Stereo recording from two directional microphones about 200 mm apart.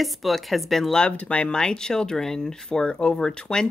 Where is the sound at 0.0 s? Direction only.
Centre (ahead or behind).